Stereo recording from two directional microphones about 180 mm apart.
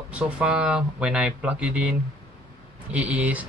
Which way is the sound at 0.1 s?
5° right (ahead or behind).